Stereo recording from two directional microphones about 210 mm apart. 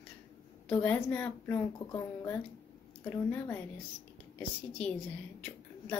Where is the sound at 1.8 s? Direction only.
20° left (ahead or behind).